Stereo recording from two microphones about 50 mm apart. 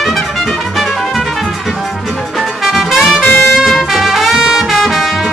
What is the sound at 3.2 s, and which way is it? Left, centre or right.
Music, left.